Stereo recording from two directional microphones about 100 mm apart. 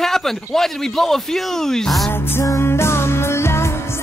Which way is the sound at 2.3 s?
30° left (ahead or behind).